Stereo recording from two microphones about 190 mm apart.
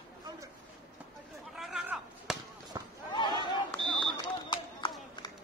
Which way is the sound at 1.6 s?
Centre (ahead or behind).